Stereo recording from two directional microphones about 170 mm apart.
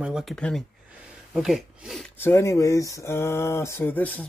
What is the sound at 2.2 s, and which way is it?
Speech, 15° left (ahead or behind).